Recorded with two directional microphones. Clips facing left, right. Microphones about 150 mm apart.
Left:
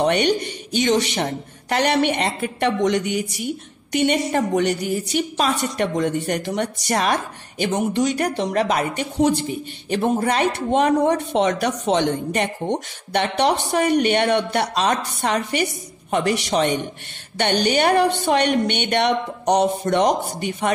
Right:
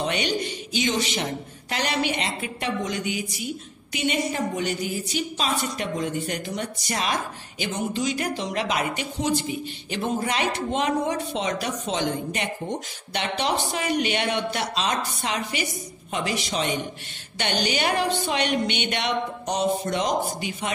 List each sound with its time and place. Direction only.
0.0 s a woman's voice: 60° left (ahead or behind)
2.8 s music: 70° left (ahead or behind)
3.9 s a woman's voice: 60° left (ahead or behind)